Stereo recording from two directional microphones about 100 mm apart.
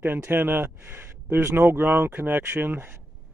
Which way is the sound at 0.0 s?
20° right (ahead or behind).